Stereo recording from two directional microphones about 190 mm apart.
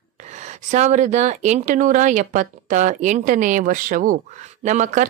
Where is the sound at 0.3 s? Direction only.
40° right (ahead or behind).